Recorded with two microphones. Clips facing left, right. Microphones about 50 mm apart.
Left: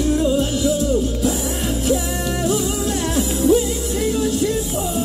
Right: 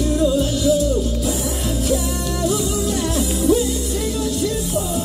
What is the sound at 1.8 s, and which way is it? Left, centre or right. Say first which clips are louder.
Music: left 1 dB; centre.